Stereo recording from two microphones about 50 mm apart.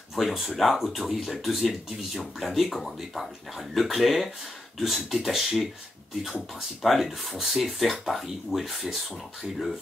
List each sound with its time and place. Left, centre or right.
0.1 s speech: centre
6.8 s speech: centre